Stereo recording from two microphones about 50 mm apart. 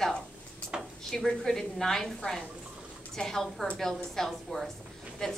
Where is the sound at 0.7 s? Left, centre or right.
Centre.